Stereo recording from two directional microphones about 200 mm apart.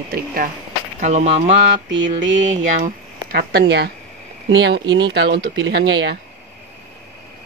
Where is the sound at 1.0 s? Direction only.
35° right (ahead or behind).